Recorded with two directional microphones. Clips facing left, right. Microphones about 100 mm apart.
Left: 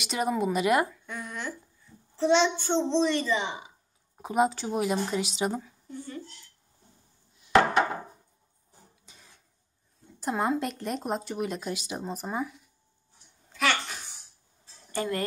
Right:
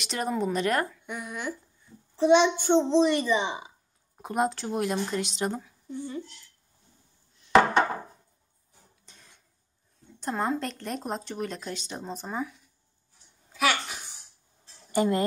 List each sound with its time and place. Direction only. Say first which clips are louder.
0.0 s speech: left 1 dB; 5° left (ahead or behind)
1.0 s a woman's voice: right 2 dB; 15° right (ahead or behind)
4.2 s speech: left 2 dB; centre (ahead or behind)
5.9 s a woman's voice: right 8 dB; 15° right (ahead or behind)
7.3 s a sound: right 2 dB; 10° left (ahead or behind)
9.0 s cough: even; 5° left (ahead or behind)
10.2 s speech: left 1 dB; 5° left (ahead or behind)
13.5 s a sound: right 1 dB; 5° right (ahead or behind)
14.9 s speech: right 6 dB; 20° right (ahead or behind)